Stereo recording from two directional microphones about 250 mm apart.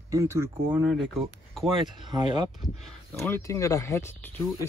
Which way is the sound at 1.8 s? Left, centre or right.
Centre.